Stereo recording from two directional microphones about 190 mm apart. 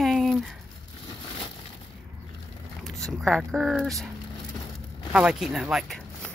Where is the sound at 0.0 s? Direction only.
Centre (ahead or behind).